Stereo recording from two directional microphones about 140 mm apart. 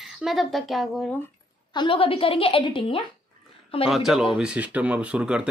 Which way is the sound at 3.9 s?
5° right (ahead or behind).